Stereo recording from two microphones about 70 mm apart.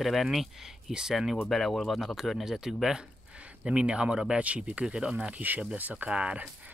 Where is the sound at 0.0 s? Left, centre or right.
Centre.